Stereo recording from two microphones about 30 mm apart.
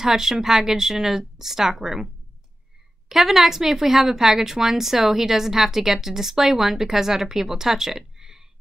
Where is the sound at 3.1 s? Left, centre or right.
Centre.